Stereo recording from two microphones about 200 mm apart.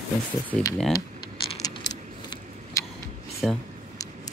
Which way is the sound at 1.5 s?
20° left (ahead or behind).